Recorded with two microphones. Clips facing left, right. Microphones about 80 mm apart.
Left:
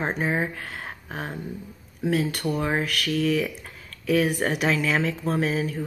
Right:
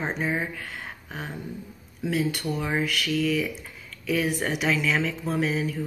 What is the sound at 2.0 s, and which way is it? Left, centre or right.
Speech, left.